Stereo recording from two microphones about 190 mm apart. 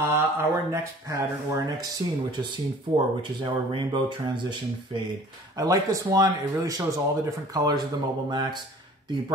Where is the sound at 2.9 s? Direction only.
25° right (ahead or behind).